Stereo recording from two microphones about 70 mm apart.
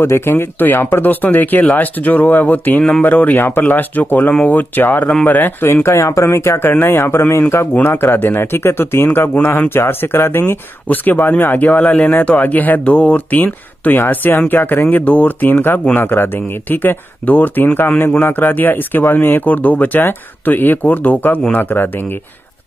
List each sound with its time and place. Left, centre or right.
0.0 s speech: left